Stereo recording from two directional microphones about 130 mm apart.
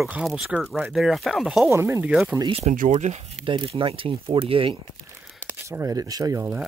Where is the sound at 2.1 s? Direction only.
5° right (ahead or behind).